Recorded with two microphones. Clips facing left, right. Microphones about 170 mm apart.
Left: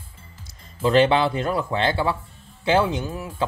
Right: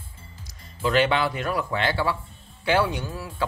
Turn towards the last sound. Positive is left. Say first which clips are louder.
# left 2 dB
turn(degrees=20)  # may be behind; listen again after turning